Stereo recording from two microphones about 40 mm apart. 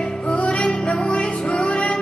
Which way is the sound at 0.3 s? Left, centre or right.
Left.